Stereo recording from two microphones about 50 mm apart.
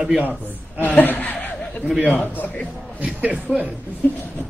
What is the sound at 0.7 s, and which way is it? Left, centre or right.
Speech, left.